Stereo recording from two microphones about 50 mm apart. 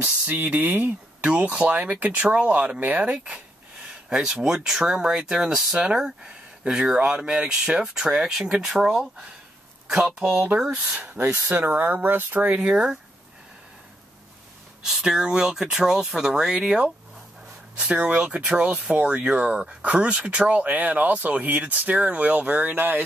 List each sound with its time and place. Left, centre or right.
0.4 s speech: right
4.1 s speech: centre
10.7 s speech: right
11.3 s speech: right
11.7 s speech: right
14.8 s speech: centre; by 23.0 s right